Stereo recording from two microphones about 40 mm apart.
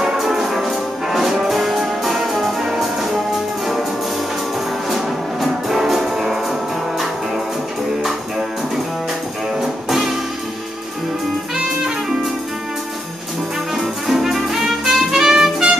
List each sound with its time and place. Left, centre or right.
0.0 s music: centre
4.9 s music: centre
9.6 s music: centre
13.7 s music: centre